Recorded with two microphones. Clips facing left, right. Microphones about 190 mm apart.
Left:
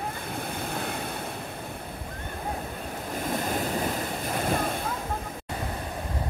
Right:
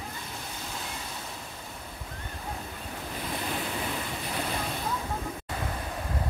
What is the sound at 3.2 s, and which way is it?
Waves, 45° left (ahead or behind).